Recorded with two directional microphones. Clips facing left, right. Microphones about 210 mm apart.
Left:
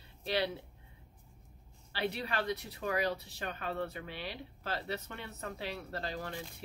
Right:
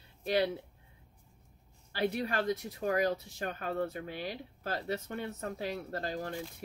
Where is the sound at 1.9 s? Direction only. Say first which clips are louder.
Right 4 dB; 45° right (ahead or behind).